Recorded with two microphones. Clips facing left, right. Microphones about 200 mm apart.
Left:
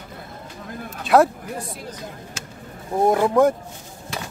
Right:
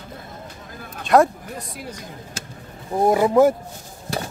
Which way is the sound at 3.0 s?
5° right (ahead or behind).